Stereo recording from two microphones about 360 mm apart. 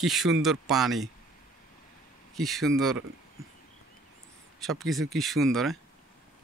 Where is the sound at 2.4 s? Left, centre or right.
Centre.